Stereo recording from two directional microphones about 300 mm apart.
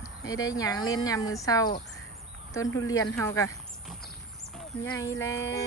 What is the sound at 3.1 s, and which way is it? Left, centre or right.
Speech, centre.